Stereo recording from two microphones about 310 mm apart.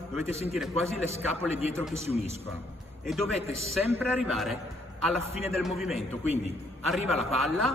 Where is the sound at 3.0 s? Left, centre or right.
Centre.